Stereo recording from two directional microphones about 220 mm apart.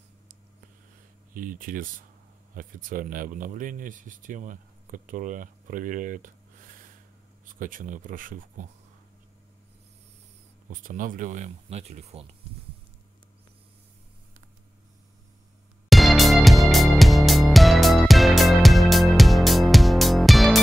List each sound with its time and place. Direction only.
1.3 s speech: 40° right (ahead or behind)
10.7 s speech: 35° right (ahead or behind)
15.9 s music: centre (ahead or behind)